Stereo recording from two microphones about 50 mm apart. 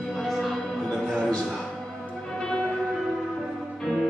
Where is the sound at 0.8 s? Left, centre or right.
Centre.